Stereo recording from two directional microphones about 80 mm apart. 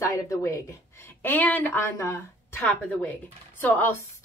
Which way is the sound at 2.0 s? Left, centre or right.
Left.